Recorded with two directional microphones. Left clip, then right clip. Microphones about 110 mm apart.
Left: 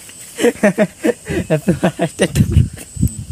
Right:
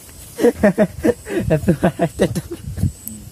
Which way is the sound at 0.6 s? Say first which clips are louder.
Left 1 dB; 45° left (ahead or behind).